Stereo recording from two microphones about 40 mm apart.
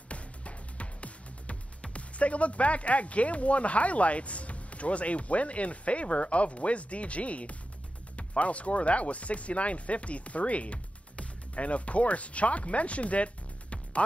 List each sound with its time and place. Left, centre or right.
0.1 s music: left
8.2 s speech: left